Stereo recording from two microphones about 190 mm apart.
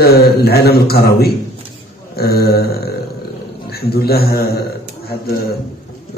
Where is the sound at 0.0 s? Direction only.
55° left (ahead or behind).